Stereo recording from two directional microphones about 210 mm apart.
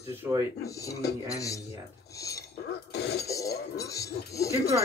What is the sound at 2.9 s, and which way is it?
Speech, 50° left (ahead or behind).